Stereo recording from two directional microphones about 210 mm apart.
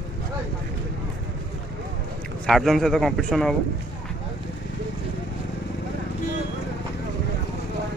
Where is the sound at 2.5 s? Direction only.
Centre (ahead or behind).